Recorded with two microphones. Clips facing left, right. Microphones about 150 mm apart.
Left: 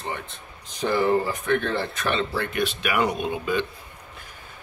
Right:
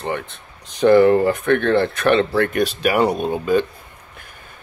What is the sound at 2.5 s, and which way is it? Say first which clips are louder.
Speech: right 3 dB; 40° right (ahead or behind).